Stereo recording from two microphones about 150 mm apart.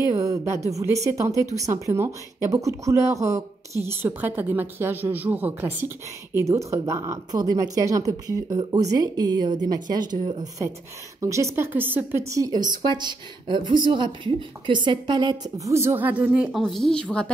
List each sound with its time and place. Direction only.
0.2 s a woman's voice: 20° right (ahead or behind); by 17.3 s 5° left (ahead or behind)